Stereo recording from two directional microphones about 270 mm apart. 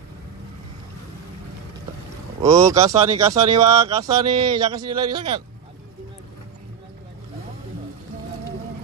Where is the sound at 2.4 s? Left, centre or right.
Centre.